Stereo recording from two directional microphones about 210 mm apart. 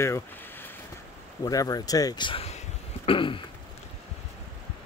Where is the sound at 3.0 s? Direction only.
25° left (ahead or behind).